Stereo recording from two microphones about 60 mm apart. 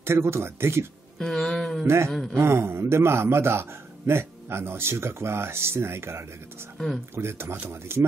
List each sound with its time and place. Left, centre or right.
0.0 s a man's voice: right
1.2 s a sound: centre
2.3 s a man's voice: right